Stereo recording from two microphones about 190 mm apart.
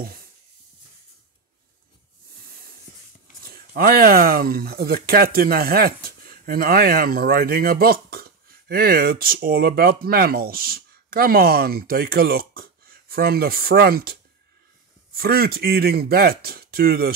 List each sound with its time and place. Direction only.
0.0 s a sound: 50° right (ahead or behind)
3.4 s speech: 50° right (ahead or behind)
15.1 s speech: 55° right (ahead or behind)